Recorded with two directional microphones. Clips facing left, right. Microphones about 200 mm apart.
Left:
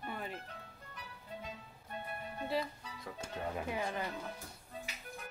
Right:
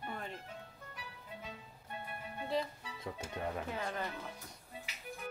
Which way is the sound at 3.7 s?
15° left (ahead or behind).